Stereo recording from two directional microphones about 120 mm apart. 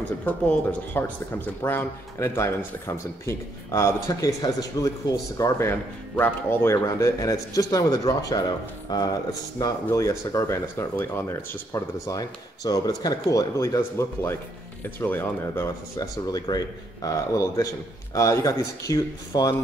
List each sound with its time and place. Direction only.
0.2 s speech: 10° left (ahead or behind)
16.0 s speech: 35° left (ahead or behind)